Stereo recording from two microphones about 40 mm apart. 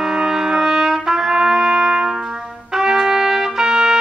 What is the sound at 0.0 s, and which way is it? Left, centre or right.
Trumpet, centre.